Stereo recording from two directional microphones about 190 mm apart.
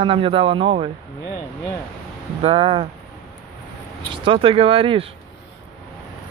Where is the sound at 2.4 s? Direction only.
30° right (ahead or behind).